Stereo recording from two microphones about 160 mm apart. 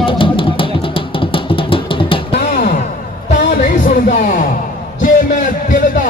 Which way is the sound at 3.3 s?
65° left (ahead or behind).